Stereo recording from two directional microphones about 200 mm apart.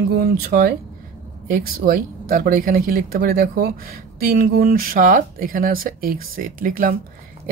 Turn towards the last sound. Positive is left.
turn(degrees=-45)  # may be behind; listen again after turning